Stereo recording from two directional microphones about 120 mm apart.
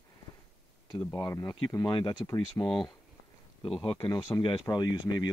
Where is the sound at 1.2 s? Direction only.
30° left (ahead or behind).